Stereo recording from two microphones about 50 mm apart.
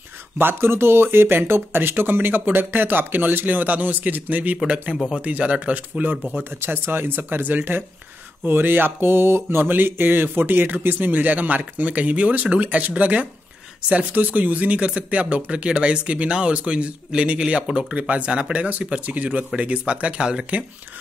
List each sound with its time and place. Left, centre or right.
0.4 s speech: right
5.1 s speech: right
6.6 s speech: right; by 20.4 s centre